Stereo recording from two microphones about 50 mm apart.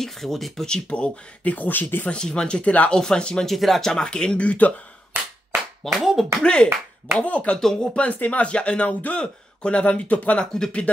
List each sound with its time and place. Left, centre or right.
0.0 s speech: centre
0.7 s a man's voice: centre; by 2.0 s left
2.0 s a man's voice: centre
3.4 s speech: centre; by 4.7 s left
5.9 s speech: centre
6.4 s a man's voice: centre
7.5 s speech: centre
8.0 s a man's voice: left